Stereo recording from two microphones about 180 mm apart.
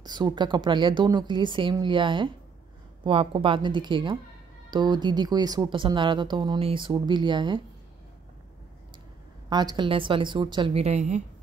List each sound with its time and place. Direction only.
0.0 s speech: 25° right (ahead or behind)
9.5 s speech: 25° right (ahead or behind); by 11.2 s 40° right (ahead or behind)